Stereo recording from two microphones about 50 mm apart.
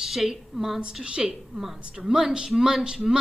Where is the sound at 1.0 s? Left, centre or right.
Centre.